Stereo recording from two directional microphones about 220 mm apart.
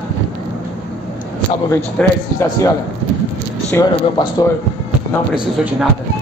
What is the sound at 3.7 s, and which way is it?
Speech, 15° left (ahead or behind).